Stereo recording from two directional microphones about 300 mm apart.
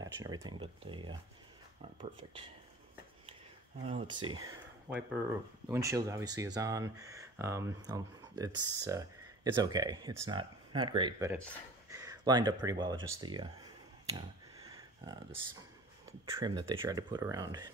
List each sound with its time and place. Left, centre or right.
0.0 s speech: centre
3.8 s speech: centre
11.9 s a sound: centre
12.6 s speech: centre
16.1 s speech: centre